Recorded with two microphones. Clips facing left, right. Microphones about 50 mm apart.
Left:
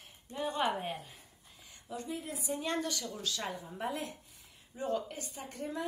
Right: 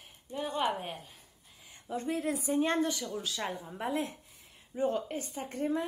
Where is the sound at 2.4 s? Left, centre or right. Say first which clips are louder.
Right 5 dB; right.